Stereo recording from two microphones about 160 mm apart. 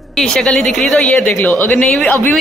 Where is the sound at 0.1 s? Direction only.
5° left (ahead or behind).